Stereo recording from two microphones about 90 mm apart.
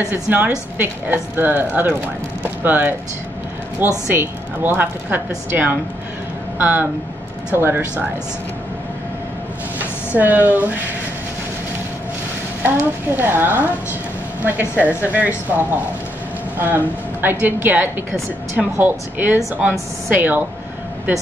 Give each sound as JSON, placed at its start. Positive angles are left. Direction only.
{"t": 0.1, "sound": "speech", "side_deg": -20}
{"t": 4.1, "sound": "speech", "side_deg": -20}
{"t": 10.1, "sound": "speech", "side_deg": -20}
{"t": 12.6, "sound": "speech", "side_deg": -20}
{"t": 14.8, "sound": "speech", "side_deg": -15}